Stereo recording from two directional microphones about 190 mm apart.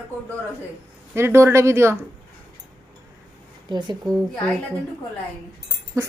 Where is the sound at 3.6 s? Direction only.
25° right (ahead or behind).